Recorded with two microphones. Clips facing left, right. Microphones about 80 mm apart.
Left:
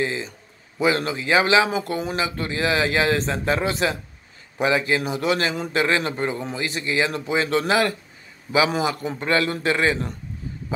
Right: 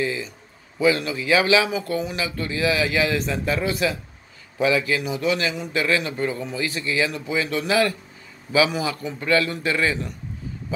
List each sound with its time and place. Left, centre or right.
0.0 s speech: left